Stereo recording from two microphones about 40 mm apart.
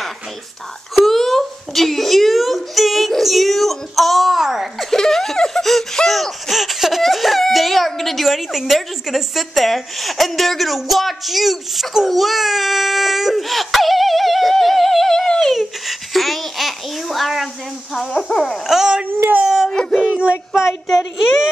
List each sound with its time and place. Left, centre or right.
1.0 s a sound: centre
4.9 s giggle: centre
6.0 s laughter: centre
6.5 s baby cry: centre
8.3 s speech: centre
12.1 s baby cry: centre
15.5 s babbling: centre
17.9 s speech: centre
19.0 s a sound: right
19.4 s dog: centre
20.0 s a sound: right